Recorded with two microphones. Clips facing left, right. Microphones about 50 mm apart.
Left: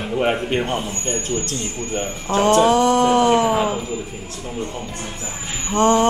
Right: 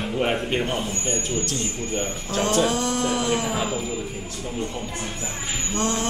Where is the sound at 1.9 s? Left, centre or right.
Left.